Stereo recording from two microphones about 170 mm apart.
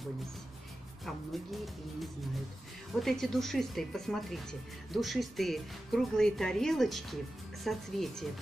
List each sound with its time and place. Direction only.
3.0 s speech: centre (ahead or behind)